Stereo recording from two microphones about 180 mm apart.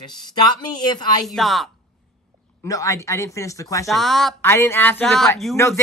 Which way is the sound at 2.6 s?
20° left (ahead or behind).